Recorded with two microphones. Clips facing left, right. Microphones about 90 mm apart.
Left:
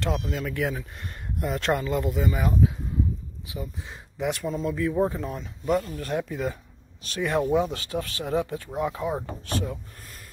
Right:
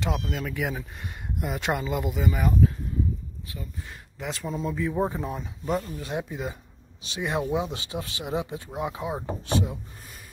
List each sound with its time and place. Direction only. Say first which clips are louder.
0.0 s speech: left 1 dB; 5° right (ahead or behind)
3.5 s speech: left 5 dB; 20° left (ahead or behind)
4.3 s speech: left 2 dB; centre (ahead or behind)
6.1 s speech: left 4 dB; 20° right (ahead or behind)
7.4 s speech: left 4 dB; centre (ahead or behind)
8.0 s speech: left 3 dB; 15° right (ahead or behind)